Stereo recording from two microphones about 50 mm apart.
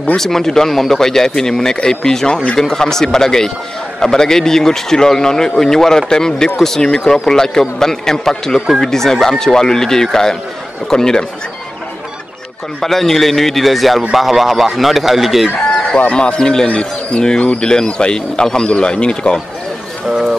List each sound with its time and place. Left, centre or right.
0.2 s speech: centre
12.8 s speech: centre
15.6 s chicken: centre
16.0 s speech: left
16.3 s speech: centre
16.6 s speech: left